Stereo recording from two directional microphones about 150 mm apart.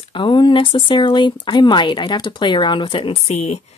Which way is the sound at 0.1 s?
30° left (ahead or behind).